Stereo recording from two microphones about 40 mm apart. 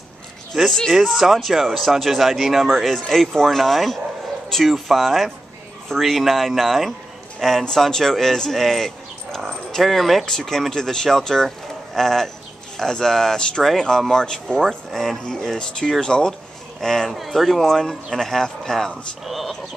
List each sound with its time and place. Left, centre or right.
0.5 s a man's voice: centre
10.2 s a man's voice: centre
14.9 s speech: centre
15.2 s a man's voice: centre
19.2 s speech: centre